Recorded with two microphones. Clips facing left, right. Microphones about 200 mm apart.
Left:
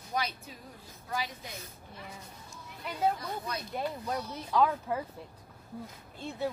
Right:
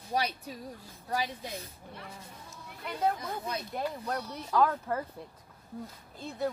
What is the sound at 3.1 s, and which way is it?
Speech, 25° right (ahead or behind).